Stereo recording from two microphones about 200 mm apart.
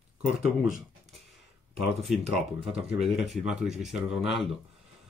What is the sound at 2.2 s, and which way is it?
Speech, 30° right (ahead or behind).